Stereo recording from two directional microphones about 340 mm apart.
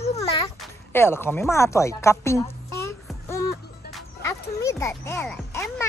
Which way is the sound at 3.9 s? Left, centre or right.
Centre.